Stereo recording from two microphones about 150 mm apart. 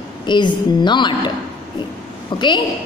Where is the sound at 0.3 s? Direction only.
30° left (ahead or behind).